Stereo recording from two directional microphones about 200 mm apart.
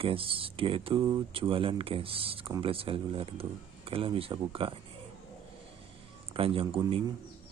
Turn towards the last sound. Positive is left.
turn(degrees=-25)  # may be behind; listen again after turning